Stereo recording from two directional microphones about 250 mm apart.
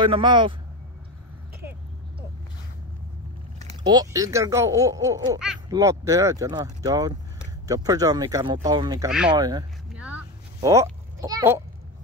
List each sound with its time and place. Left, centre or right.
0.0 s speech: centre
3.5 s speech: right
9.9 s a sound: centre